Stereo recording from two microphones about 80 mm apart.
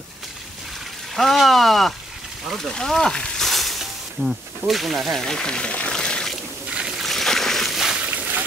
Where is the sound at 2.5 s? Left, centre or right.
Centre.